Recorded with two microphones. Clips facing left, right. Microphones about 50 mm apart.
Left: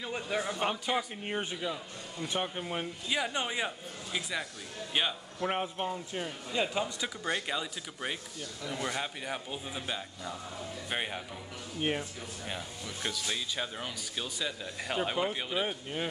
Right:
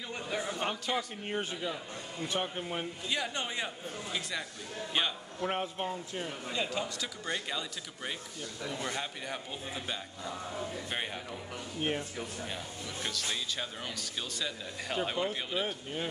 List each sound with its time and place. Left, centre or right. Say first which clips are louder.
0.6 s speech: left 2 dB; centre
6.5 s speech: left 4 dB; centre